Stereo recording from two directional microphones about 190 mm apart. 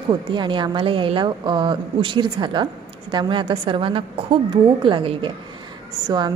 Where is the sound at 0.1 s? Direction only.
25° right (ahead or behind).